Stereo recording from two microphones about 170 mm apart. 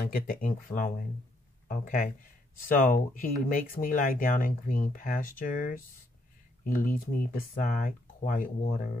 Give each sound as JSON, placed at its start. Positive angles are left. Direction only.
{"t": 0.0, "sound": "speech", "side_deg": 55}